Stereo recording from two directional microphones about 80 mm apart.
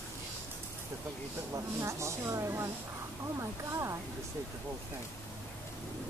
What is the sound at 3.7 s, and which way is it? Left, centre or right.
Speech, right.